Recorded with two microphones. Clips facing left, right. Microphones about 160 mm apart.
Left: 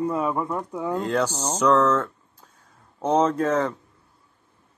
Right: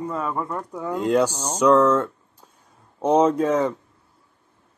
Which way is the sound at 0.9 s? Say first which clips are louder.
Right 5 dB; 10° right (ahead or behind).